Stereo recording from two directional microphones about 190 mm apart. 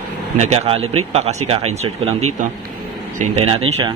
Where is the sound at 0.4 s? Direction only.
35° right (ahead or behind).